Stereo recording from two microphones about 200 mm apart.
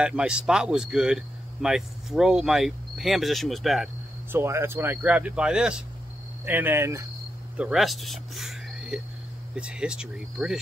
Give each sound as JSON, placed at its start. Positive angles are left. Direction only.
{"t": 0.0, "sound": "speech", "side_deg": -5}
{"t": 4.3, "sound": "speech", "side_deg": -10}